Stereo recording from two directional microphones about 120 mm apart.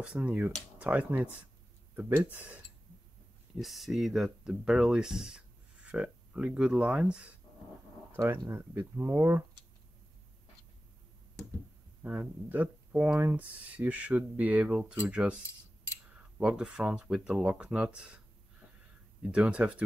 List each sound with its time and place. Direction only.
0.0 s speech: 10° right (ahead or behind)
12.0 s speech: 15° right (ahead or behind)
19.2 s speech: 10° right (ahead or behind)